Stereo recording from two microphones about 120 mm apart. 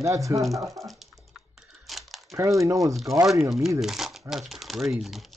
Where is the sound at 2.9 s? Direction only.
Centre (ahead or behind).